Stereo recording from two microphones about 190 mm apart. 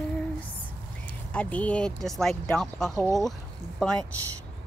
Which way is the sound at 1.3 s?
5° left (ahead or behind).